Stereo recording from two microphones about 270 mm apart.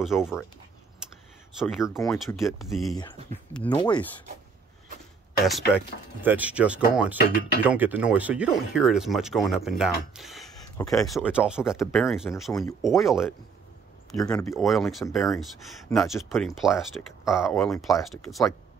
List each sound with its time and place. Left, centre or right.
0.0 s speech: centre
1.6 s speech: centre
3.8 s speech: centre
5.7 s speech: centre
14.3 s speech: centre